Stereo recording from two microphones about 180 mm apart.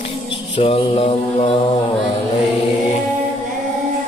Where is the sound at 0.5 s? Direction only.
30° left (ahead or behind).